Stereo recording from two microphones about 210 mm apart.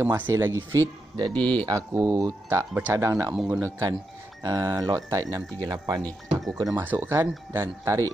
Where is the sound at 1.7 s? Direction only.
15° right (ahead or behind).